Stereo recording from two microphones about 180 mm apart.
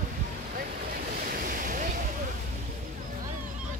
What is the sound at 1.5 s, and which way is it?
Waves, 50° right (ahead or behind).